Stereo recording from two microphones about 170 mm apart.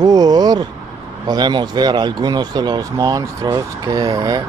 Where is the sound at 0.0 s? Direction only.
25° right (ahead or behind).